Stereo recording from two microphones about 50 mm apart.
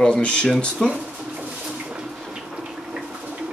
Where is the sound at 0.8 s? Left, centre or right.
Centre.